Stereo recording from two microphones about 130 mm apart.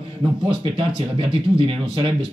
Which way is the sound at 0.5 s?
40° right (ahead or behind).